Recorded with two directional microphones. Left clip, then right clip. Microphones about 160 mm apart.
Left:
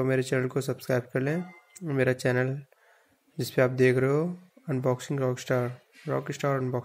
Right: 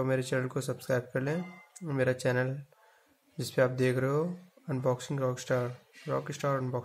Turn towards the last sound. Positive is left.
turn(degrees=20)  # may be behind; listen again after turning